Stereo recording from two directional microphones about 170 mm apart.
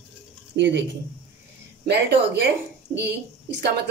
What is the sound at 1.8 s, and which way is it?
Speech, 90° right.